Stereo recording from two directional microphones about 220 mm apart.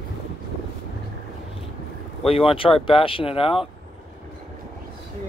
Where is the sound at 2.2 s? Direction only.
25° left (ahead or behind).